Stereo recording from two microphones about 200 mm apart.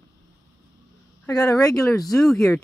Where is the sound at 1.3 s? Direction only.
15° left (ahead or behind).